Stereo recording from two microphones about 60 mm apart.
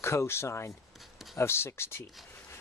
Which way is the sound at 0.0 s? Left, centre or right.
Left.